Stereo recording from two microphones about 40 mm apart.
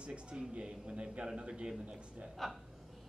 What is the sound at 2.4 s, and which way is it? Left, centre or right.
Speech, centre.